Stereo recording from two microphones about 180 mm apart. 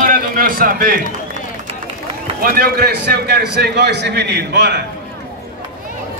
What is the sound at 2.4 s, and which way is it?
A man's voice, 55° right (ahead or behind).